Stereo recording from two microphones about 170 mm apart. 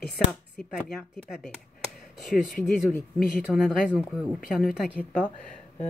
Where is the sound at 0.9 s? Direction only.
5° left (ahead or behind).